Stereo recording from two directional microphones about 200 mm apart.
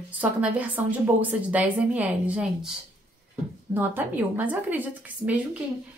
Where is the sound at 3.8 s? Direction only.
10° right (ahead or behind).